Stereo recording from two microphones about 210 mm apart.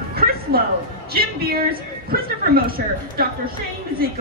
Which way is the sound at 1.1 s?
45° right (ahead or behind).